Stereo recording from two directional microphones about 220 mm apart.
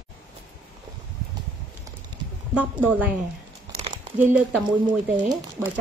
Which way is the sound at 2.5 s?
5° right (ahead or behind).